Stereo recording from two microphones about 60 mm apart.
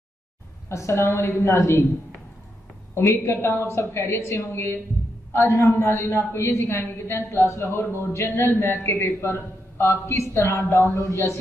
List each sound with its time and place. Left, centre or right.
0.7 s a woman's voice: left
2.9 s a woman's voice: left
5.8 s a woman's voice: left